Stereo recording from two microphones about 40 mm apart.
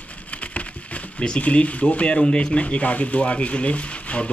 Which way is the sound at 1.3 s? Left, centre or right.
Left.